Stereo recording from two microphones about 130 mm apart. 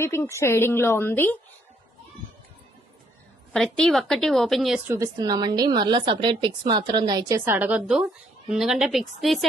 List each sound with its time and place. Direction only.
0.0 s a woman's voice: 20° left (ahead or behind)
3.5 s a woman's voice: 5° left (ahead or behind)
4.8 s a woman's voice: 25° right (ahead or behind); by 9.5 s centre (ahead or behind)